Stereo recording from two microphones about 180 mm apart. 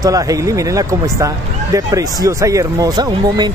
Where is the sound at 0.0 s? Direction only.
20° right (ahead or behind).